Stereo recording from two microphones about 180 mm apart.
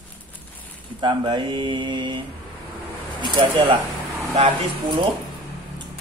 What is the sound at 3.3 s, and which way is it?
Speech, 30° right (ahead or behind).